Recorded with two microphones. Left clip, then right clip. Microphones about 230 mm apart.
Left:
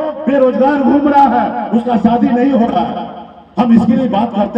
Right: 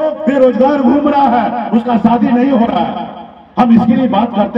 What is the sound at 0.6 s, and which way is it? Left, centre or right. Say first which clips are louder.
Speech: right 1 dB; right.